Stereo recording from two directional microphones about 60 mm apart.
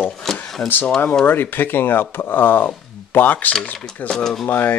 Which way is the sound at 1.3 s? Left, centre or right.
Left.